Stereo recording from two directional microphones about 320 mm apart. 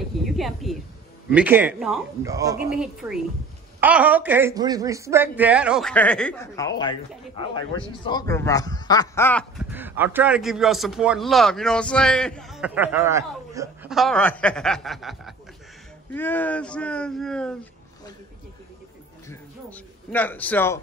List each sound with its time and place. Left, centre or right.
0.2 s a sound: centre
1.3 s speech: centre
8.0 s speech: centre
19.2 s a man's voice: centre